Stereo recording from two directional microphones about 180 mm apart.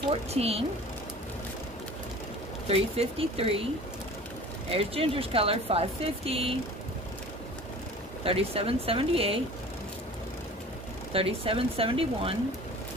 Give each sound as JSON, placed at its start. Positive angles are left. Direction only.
{"t": 0.1, "sound": "speech", "side_deg": -35}
{"t": 2.7, "sound": "speech", "side_deg": -35}
{"t": 4.6, "sound": "speech", "side_deg": -30}
{"t": 8.2, "sound": "speech", "side_deg": -30}
{"t": 11.1, "sound": "speech", "side_deg": -30}